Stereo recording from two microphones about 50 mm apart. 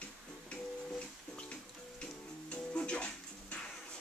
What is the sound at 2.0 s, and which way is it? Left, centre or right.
Music, left.